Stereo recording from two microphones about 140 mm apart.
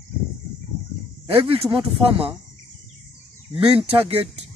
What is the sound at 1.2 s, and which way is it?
Speech, 40° right (ahead or behind).